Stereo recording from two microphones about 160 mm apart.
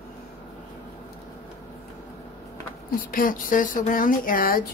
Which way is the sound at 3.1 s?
60° left (ahead or behind).